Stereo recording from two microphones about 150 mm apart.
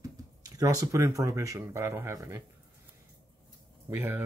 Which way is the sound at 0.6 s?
20° right (ahead or behind).